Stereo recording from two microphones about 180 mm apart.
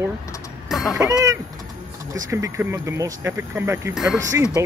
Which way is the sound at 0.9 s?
20° right (ahead or behind).